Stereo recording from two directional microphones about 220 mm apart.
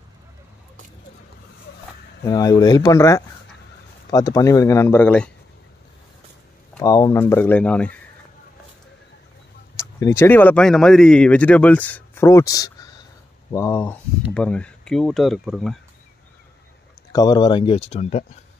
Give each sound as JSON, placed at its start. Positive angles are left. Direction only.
{"t": 2.2, "sound": "speech", "side_deg": 15}
{"t": 6.7, "sound": "speech", "side_deg": 15}
{"t": 9.8, "sound": "speech", "side_deg": 15}
{"t": 17.1, "sound": "speech", "side_deg": 15}